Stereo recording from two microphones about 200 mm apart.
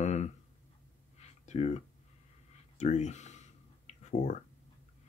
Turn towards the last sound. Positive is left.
turn(degrees=35)  # may be behind; listen again after turning